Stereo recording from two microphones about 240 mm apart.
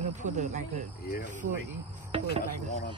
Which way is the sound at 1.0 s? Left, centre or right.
Left.